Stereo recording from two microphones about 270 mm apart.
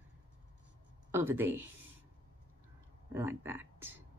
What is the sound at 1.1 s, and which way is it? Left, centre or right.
Speech, centre.